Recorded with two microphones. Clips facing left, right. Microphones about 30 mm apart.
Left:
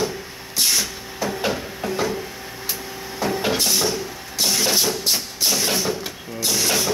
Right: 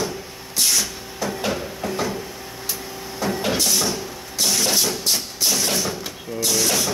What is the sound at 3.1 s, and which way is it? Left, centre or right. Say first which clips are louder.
Printer: left 1 dB; centre.